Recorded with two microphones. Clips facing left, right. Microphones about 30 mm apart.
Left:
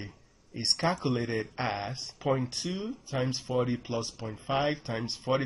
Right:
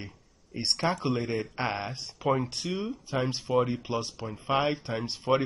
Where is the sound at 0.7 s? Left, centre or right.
Centre.